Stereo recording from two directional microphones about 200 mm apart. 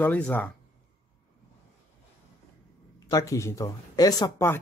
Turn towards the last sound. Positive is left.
turn(degrees=15)  # may be behind; listen again after turning